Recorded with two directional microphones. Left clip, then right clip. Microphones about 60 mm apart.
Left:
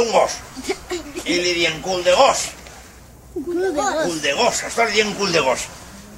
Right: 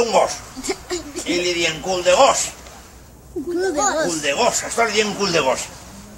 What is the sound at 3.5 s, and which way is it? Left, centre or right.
Speech, centre.